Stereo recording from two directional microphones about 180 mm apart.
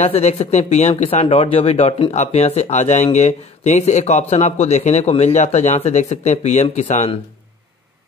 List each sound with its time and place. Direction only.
0.0 s speech: 35° left (ahead or behind)